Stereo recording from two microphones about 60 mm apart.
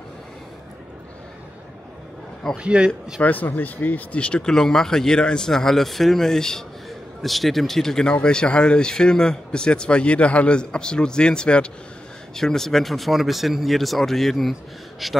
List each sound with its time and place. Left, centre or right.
2.5 s speech: centre
3.2 s speech: left
4.2 s speech: centre